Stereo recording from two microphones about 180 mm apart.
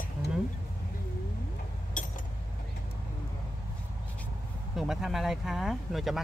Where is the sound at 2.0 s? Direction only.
45° left (ahead or behind).